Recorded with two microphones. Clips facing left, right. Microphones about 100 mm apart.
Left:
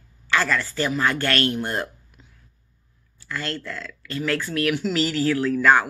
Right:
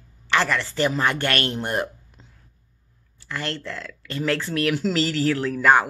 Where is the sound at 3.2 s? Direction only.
25° right (ahead or behind).